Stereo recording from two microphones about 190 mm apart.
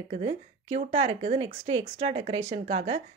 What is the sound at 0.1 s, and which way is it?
Speech, 35° right (ahead or behind).